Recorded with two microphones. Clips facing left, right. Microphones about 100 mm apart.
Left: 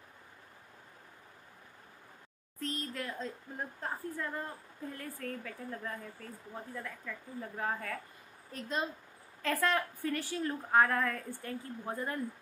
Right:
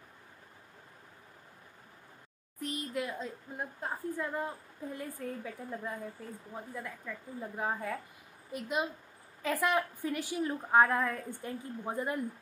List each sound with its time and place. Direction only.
2.6 s a woman's voice: 15° right (ahead or behind)